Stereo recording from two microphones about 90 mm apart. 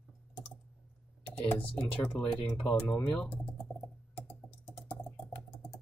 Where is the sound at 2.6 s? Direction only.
5° left (ahead or behind).